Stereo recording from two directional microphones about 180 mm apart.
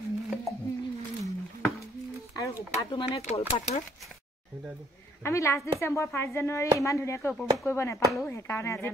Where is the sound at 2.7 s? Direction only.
35° left (ahead or behind).